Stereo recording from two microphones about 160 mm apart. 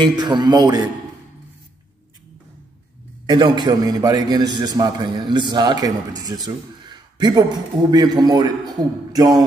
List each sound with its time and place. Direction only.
0.0 s a man's voice: 25° right (ahead or behind)
3.3 s a man's voice: 30° right (ahead or behind)